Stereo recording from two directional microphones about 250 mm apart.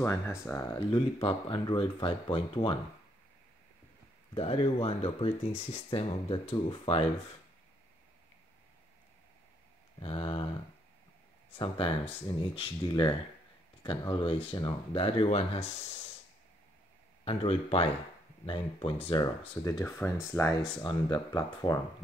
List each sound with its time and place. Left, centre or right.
0.0 s speech: centre
4.3 s speech: left
9.9 s speech: left
11.5 s speech: left
17.2 s speech: left